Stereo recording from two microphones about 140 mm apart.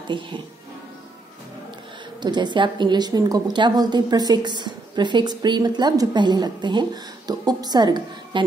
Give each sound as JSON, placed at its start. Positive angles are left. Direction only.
{"t": 2.2, "sound": "a woman's voice", "side_deg": -30}